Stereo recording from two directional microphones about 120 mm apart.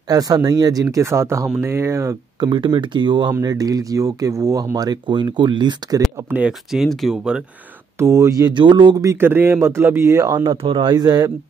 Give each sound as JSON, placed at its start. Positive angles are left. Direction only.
{"t": 0.1, "sound": "speech", "side_deg": -30}
{"t": 2.4, "sound": "speech", "side_deg": -40}
{"t": 6.3, "sound": "speech", "side_deg": -5}
{"t": 8.0, "sound": "speech", "side_deg": -25}
{"t": 10.6, "sound": "speech", "side_deg": -45}